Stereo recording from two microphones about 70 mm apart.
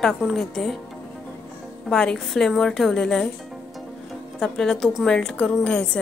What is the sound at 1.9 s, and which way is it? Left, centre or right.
A woman's voice, centre.